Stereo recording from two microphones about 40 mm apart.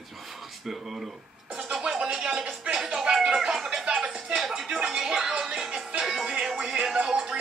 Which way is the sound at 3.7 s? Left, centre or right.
Centre.